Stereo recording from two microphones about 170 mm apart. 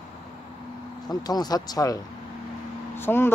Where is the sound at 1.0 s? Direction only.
25° left (ahead or behind).